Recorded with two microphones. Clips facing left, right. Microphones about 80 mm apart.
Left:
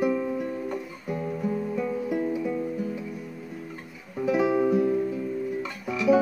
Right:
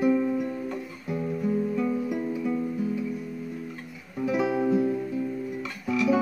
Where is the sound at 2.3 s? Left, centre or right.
Centre.